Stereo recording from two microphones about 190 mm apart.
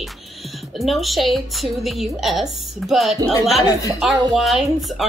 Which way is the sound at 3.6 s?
20° left (ahead or behind).